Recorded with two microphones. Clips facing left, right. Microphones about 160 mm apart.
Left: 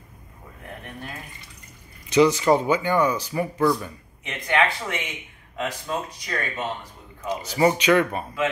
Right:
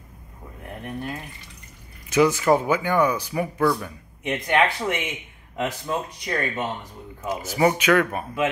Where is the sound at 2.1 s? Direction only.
5° right (ahead or behind).